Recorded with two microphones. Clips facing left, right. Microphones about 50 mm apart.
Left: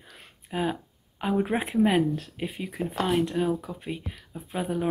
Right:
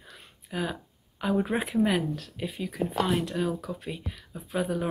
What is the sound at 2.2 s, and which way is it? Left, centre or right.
Speech, left.